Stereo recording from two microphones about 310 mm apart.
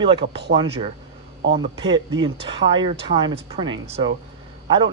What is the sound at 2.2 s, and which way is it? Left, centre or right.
Speech, centre.